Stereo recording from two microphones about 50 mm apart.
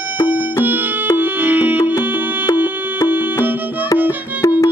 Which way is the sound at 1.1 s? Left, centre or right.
Right.